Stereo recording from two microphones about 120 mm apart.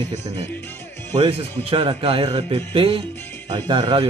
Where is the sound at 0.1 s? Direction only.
20° left (ahead or behind).